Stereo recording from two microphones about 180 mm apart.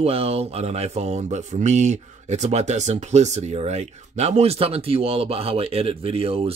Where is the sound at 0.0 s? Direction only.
35° right (ahead or behind).